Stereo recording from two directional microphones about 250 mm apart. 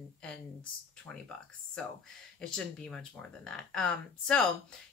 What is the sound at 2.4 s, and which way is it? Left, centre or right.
A woman's voice, centre.